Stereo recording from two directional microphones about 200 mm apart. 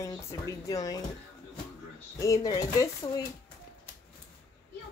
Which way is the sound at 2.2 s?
20° left (ahead or behind).